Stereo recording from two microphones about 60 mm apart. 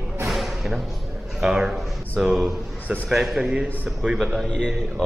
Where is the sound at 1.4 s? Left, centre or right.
Centre.